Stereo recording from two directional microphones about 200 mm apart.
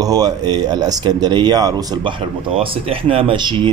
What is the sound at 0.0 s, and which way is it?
Speech, 20° right (ahead or behind).